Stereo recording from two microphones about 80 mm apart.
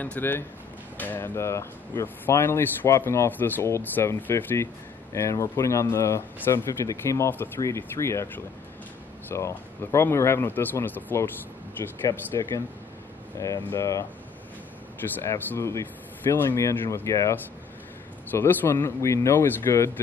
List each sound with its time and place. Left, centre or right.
0.0 s speech: left
5.1 s speech: left
7.2 s speech: left
9.3 s speech: left
12.4 s speech: left
15.3 s speech: left
18.3 s speech: left